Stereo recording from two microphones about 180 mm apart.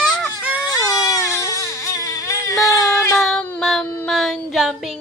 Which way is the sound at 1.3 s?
15° left (ahead or behind).